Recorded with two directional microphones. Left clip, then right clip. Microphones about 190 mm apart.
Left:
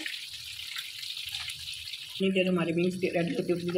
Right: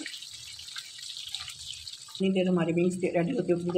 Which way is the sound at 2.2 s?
35° right (ahead or behind).